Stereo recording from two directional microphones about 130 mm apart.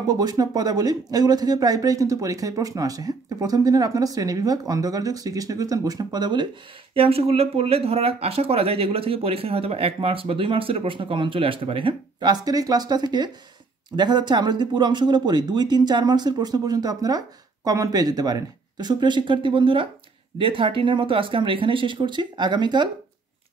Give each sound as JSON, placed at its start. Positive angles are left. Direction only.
{"t": 0.0, "sound": "speech", "side_deg": -30}